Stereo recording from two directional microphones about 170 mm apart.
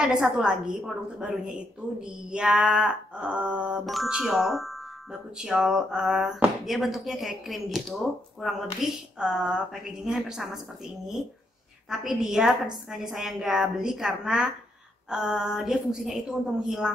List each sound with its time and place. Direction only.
0.0 s a woman's voice: 5° right (ahead or behind)
10.0 s a woman's voice: 5° right (ahead or behind)
11.9 s a woman's voice: centre (ahead or behind)